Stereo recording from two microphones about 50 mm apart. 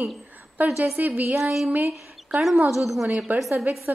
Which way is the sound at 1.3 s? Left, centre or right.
Centre.